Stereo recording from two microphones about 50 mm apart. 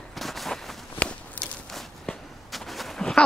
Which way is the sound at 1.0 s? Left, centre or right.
Left.